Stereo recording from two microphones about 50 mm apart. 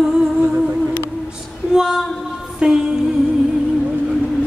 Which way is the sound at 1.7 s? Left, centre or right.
Centre.